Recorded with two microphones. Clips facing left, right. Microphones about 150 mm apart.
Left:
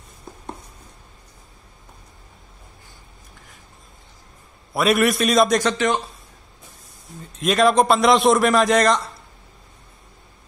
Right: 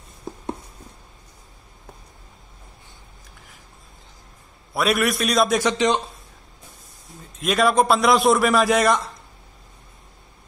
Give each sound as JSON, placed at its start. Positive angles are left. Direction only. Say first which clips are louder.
{"t": 4.7, "sound": "a man's voice", "louder": "left 3 dB", "side_deg": 0}
{"t": 5.6, "sound": "speech", "louder": "right 1 dB", "side_deg": -15}
{"t": 7.3, "sound": "a man's voice", "louder": "left 2 dB", "side_deg": 0}